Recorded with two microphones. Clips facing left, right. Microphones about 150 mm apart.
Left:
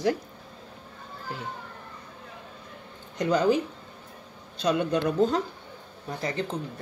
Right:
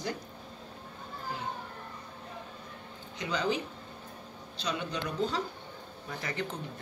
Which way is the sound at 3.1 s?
50° left (ahead or behind).